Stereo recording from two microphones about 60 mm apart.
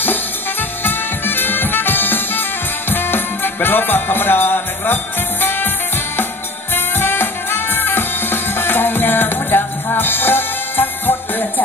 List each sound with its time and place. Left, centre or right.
0.0 s music: left
6.7 s music: left